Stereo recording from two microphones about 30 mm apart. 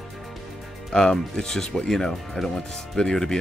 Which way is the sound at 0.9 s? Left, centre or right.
Centre.